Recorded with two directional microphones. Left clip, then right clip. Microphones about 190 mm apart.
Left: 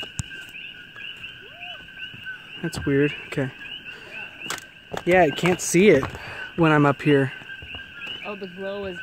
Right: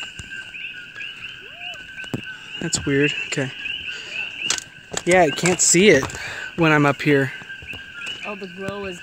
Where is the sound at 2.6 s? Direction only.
Centre (ahead or behind).